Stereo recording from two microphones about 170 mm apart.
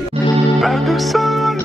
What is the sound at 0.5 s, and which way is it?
Music, centre (ahead or behind).